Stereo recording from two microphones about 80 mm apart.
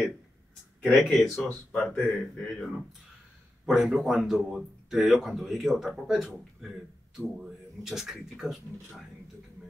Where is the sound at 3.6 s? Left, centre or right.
Centre.